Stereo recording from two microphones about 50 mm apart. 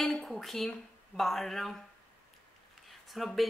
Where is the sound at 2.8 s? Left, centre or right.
Centre.